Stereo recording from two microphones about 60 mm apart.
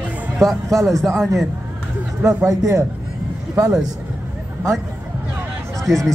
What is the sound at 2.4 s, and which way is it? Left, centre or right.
Speech, right.